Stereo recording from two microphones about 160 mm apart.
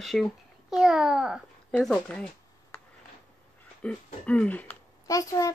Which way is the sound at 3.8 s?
5° left (ahead or behind).